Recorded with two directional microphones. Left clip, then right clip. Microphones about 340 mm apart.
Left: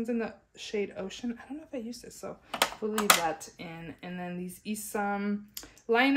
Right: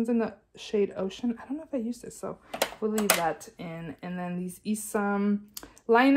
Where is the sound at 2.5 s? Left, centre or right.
Centre.